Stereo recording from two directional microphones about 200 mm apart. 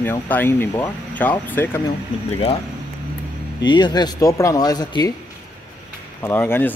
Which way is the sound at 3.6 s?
20° left (ahead or behind).